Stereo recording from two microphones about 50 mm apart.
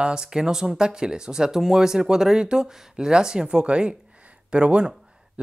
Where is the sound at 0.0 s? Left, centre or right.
Centre.